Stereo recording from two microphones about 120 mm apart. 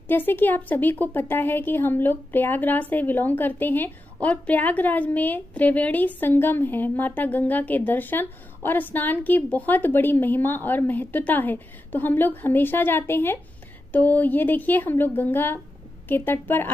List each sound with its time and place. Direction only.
0.1 s a woman's voice: 15° left (ahead or behind)